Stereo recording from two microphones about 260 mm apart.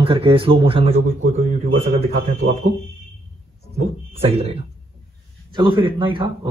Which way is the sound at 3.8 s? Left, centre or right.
Right.